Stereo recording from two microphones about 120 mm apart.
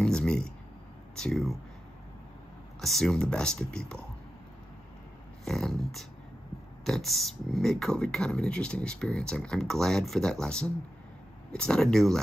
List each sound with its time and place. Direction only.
0.0 s a sound: 5° left (ahead or behind)
1.1 s speech: 5° left (ahead or behind)
2.8 s speech: centre (ahead or behind)
5.4 s speech: 5° left (ahead or behind)